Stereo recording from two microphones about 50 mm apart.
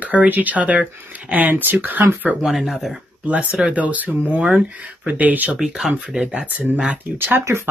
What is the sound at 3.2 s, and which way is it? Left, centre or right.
Speech, right.